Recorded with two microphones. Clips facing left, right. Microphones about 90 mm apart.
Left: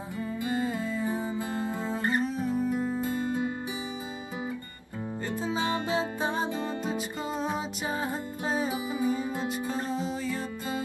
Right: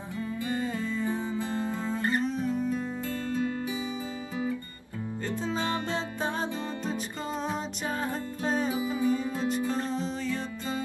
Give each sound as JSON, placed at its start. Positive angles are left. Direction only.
{"t": 0.4, "sound": "music", "side_deg": 20}
{"t": 2.2, "sound": "music", "side_deg": 5}
{"t": 2.9, "sound": "music", "side_deg": 15}
{"t": 5.3, "sound": "music", "side_deg": 10}
{"t": 8.1, "sound": "music", "side_deg": 10}